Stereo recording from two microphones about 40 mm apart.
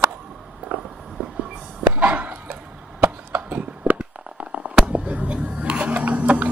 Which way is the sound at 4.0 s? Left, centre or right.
Right.